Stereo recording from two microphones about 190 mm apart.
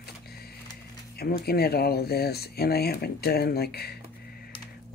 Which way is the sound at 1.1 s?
55° left (ahead or behind).